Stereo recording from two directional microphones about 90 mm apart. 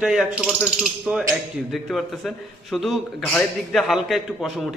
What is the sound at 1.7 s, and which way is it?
A man's voice, 5° left (ahead or behind).